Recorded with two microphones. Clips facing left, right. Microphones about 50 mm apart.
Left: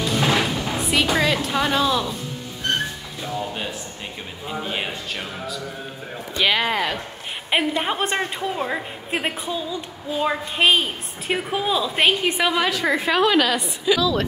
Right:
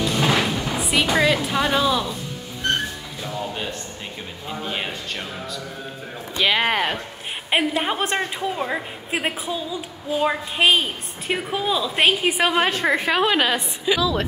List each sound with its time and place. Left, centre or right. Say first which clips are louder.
0.0 s music: even; centre
3.3 s a woman's voice: left 1 dB; centre
6.7 s speech: right 1 dB; right
7.5 s a woman's voice: even; centre
12.5 s a woman's voice: right 1 dB; right
13.1 s a woman's voice: left 4 dB; right